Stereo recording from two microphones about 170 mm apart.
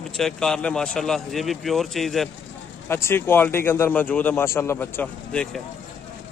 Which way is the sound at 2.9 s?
15° left (ahead or behind).